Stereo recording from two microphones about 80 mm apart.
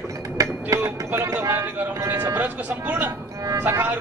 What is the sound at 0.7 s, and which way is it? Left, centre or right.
Speech, right.